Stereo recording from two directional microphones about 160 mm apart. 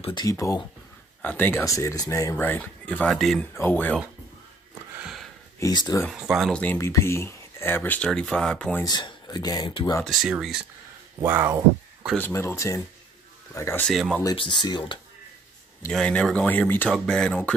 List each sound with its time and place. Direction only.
0.0 s speech: 25° left (ahead or behind); by 4.0 s 10° left (ahead or behind)
4.9 s a sound: 5° right (ahead or behind)
5.6 s speech: 25° left (ahead or behind)
6.1 s speech: centre (ahead or behind)
8.8 s speech: 25° left (ahead or behind)
10.0 s speech: centre (ahead or behind)
11.1 s speech: 15° right (ahead or behind)
12.2 s speech: 15° left (ahead or behind)
13.8 s speech: centre (ahead or behind)
14.3 s speech: 30° left (ahead or behind)
15.9 s speech: 5° left (ahead or behind)